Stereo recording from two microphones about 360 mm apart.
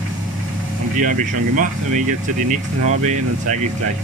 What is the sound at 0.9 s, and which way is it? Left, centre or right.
Speech, right.